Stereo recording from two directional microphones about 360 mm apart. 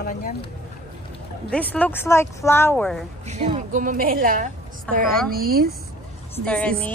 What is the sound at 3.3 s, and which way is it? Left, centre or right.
A woman's voice, centre.